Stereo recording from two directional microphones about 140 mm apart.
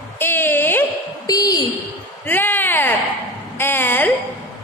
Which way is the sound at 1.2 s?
25° left (ahead or behind).